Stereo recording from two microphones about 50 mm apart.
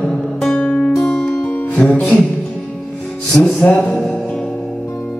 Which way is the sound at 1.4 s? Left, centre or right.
Left.